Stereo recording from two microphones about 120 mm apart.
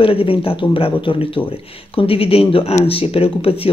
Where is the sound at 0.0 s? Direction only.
50° left (ahead or behind).